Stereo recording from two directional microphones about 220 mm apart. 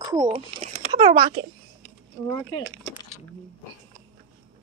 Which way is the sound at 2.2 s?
15° left (ahead or behind).